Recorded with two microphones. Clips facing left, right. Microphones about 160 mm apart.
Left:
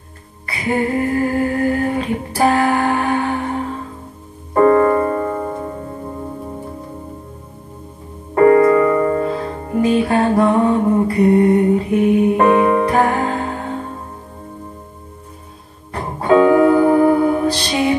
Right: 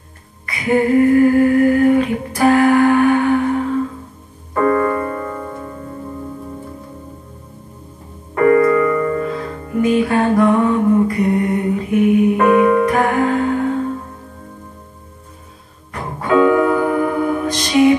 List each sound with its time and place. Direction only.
0.5 s humming: 30° left (ahead or behind)
4.6 s music: 30° left (ahead or behind)
8.4 s music: 30° left (ahead or behind)
15.9 s music: 30° left (ahead or behind)